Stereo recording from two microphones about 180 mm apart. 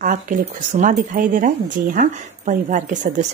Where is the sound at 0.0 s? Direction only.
45° right (ahead or behind).